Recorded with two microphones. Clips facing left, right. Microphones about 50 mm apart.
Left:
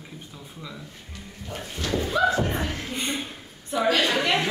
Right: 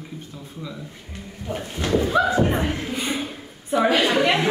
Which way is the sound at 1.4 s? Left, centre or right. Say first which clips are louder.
Right 5 dB; centre.